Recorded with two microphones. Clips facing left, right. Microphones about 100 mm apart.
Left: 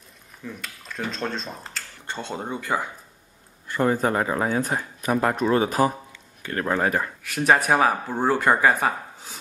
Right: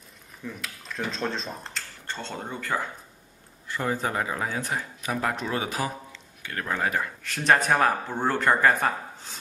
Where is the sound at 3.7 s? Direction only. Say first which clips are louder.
Left 6 dB; 50° left (ahead or behind).